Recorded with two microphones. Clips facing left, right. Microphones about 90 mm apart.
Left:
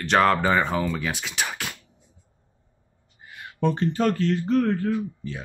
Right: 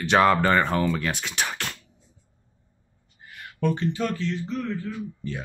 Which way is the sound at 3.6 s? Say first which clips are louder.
Left 3 dB; 35° left (ahead or behind).